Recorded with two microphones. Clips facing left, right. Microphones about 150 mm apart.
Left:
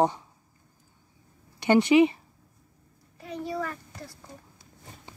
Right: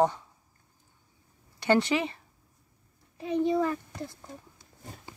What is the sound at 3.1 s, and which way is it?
A child's voice, 20° right (ahead or behind).